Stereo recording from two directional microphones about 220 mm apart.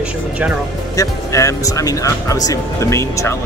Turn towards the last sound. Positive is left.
turn(degrees=15)  # may be behind; listen again after turning